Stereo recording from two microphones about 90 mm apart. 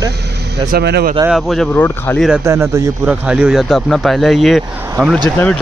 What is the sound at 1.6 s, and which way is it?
Speech, 25° left (ahead or behind).